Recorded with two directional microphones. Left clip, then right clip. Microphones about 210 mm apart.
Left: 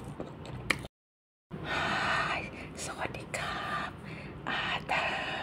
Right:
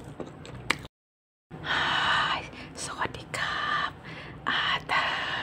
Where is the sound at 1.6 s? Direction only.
20° right (ahead or behind).